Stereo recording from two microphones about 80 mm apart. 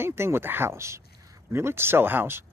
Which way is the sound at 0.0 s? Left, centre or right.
Right.